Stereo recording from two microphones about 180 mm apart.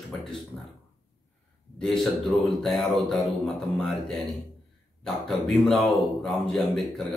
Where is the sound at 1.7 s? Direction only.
5° left (ahead or behind).